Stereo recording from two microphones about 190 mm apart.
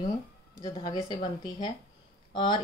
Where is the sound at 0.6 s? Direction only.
20° left (ahead or behind).